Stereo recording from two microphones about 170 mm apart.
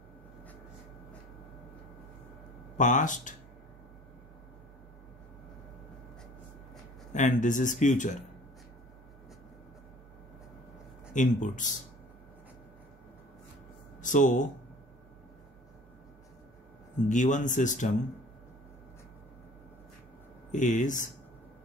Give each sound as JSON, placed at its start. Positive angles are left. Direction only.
{"t": 2.8, "sound": "speech", "side_deg": 50}
{"t": 7.1, "sound": "speech", "side_deg": 45}
{"t": 11.1, "sound": "speech", "side_deg": 50}
{"t": 14.0, "sound": "speech", "side_deg": 50}
{"t": 17.1, "sound": "speech", "side_deg": 45}
{"t": 20.5, "sound": "speech", "side_deg": 45}